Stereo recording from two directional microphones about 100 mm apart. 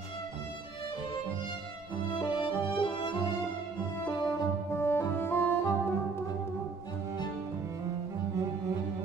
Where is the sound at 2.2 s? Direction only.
55° left (ahead or behind).